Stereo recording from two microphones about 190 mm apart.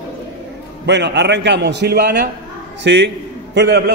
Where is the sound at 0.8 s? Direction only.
65° right (ahead or behind).